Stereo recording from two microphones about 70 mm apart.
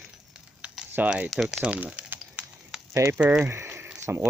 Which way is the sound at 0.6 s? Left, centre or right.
Centre.